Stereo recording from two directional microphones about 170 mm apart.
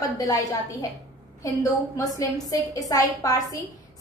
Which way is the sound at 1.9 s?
20° left (ahead or behind).